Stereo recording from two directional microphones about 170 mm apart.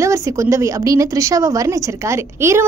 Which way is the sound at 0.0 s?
15° right (ahead or behind).